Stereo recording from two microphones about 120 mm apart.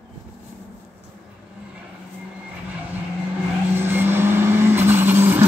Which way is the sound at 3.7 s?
20° right (ahead or behind).